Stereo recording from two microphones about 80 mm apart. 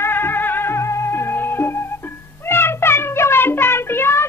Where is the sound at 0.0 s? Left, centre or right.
Left.